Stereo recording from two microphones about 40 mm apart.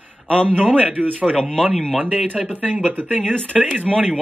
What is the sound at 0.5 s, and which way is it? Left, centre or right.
Speech, right.